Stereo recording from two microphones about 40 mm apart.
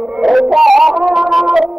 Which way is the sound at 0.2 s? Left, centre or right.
Centre.